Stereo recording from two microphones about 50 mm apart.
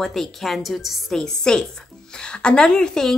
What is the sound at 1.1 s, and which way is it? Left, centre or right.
Speech, centre.